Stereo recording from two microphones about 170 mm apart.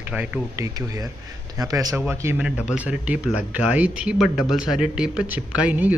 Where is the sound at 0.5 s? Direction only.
20° right (ahead or behind).